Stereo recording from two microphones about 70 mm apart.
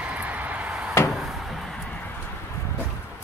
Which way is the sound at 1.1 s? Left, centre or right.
Centre.